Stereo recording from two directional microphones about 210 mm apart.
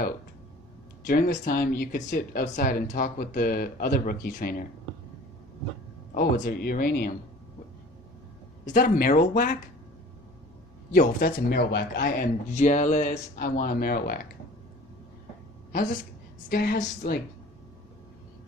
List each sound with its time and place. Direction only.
1.0 s speech: 45° left (ahead or behind)
6.1 s speech: 40° left (ahead or behind)
8.6 s speech: 45° left (ahead or behind)
10.9 s speech: 45° left (ahead or behind)
15.7 s a woman's voice: 40° left (ahead or behind)